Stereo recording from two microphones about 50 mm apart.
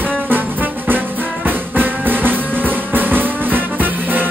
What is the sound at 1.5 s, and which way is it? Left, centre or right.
Music, right.